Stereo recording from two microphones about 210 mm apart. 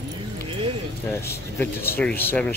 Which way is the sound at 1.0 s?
10° left (ahead or behind).